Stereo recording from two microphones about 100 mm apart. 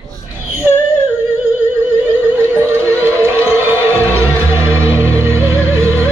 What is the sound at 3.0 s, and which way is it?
Music, 25° right (ahead or behind).